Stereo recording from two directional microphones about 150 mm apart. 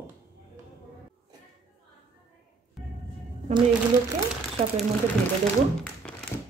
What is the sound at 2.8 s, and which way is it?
Music, centre (ahead or behind).